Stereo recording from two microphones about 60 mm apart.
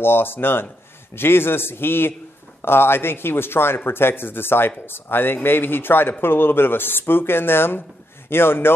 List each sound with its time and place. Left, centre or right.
0.0 s speech: left